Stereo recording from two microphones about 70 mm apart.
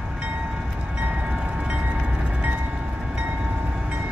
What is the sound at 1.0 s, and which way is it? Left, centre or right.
Train, centre.